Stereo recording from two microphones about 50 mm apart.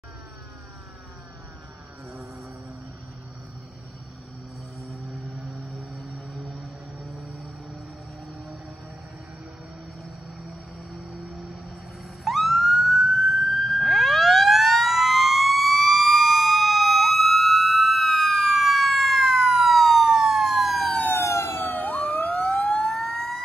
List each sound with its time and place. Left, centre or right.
4.8 s music: centre
6.6 s music: centre
11.0 s music: centre
12.3 s emergency vehicle: centre
21.1 s emergency vehicle: left
21.7 s emergency vehicle: left
22.5 s emergency vehicle: centre